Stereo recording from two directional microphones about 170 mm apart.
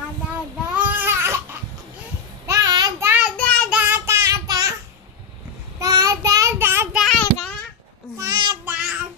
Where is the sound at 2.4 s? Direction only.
20° right (ahead or behind).